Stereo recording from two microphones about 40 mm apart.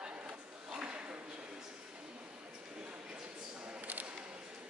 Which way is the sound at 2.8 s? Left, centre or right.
Right.